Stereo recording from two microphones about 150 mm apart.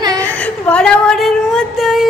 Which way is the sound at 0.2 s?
10° left (ahead or behind).